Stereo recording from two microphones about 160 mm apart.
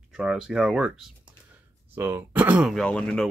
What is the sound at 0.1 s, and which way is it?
Speech, 5° right (ahead or behind).